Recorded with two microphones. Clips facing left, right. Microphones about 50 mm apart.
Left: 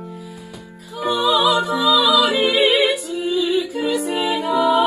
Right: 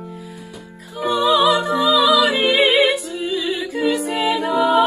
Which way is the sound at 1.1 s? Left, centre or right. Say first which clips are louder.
Right 1 dB; right.